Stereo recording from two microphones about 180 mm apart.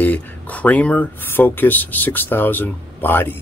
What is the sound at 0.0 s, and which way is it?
Speech, 10° left (ahead or behind).